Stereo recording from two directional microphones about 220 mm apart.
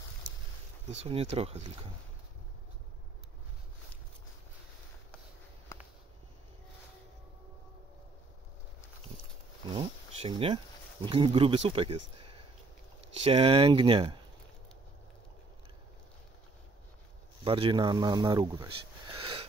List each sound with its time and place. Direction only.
0.3 s a sound: 60° right (ahead or behind)
0.8 s speech: 30° right (ahead or behind)
9.7 s speech: 25° right (ahead or behind)
17.4 s speech: 25° right (ahead or behind)